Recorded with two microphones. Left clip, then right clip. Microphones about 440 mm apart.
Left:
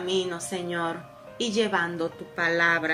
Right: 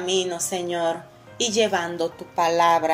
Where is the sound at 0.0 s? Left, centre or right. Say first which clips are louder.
Right 4 dB; centre.